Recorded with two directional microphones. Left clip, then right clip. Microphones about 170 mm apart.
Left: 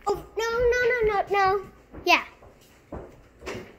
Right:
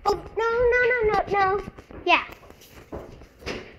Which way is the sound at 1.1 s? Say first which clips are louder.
Right 1 dB; 30° left (ahead or behind).